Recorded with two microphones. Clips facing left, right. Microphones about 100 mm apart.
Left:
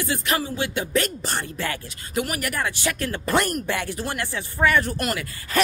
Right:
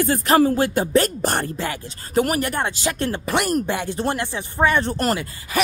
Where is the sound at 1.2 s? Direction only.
50° right (ahead or behind).